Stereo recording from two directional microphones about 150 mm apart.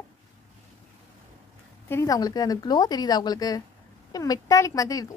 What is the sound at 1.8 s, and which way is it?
A woman's voice, 20° left (ahead or behind).